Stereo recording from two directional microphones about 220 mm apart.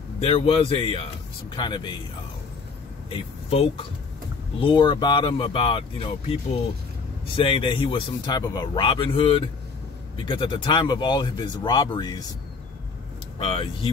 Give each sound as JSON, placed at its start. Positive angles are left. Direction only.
{"t": 0.2, "sound": "speech", "side_deg": 25}
{"t": 3.1, "sound": "speech", "side_deg": 25}
{"t": 7.3, "sound": "speech", "side_deg": 25}
{"t": 13.4, "sound": "speech", "side_deg": 25}